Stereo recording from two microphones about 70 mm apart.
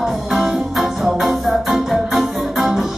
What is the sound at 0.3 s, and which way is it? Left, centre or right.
Music, centre.